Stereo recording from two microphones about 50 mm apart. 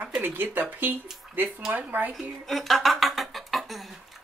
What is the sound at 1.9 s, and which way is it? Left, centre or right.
Speech, right.